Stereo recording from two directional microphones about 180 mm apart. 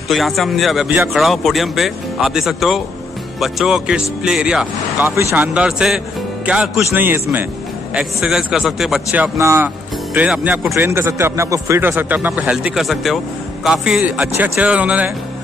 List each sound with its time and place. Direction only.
0.1 s speech: centre (ahead or behind)
0.8 s speech: 10° right (ahead or behind)
1.1 s speech: centre (ahead or behind)